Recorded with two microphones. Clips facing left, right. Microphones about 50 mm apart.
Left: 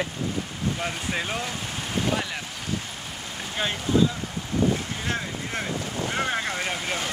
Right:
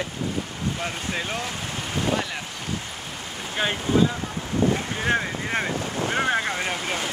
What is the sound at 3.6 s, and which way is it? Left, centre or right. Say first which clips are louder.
Speech: right 3 dB; centre.